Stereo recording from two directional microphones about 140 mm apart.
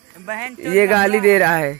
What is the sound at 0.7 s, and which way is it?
Speech, 5° left (ahead or behind).